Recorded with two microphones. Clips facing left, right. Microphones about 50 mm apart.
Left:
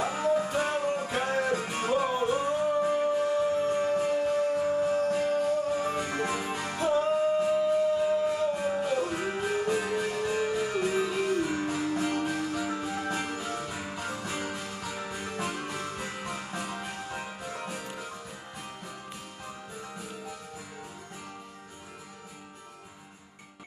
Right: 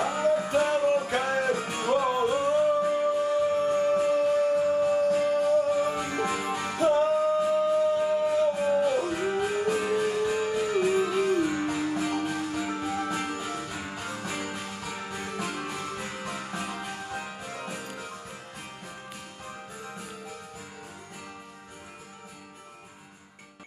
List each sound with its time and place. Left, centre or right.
0.0 s music: right